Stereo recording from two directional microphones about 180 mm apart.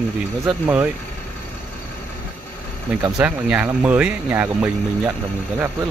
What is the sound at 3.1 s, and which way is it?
Speech, 5° right (ahead or behind).